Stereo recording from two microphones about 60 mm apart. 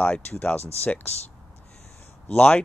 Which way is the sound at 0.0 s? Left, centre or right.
Left.